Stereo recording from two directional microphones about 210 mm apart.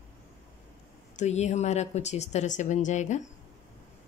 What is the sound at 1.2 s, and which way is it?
Speech, 35° left (ahead or behind).